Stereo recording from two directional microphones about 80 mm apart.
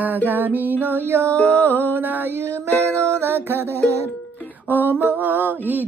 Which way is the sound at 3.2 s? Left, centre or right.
Right.